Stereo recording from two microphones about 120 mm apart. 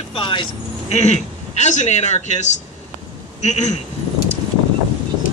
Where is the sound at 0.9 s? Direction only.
70° left (ahead or behind).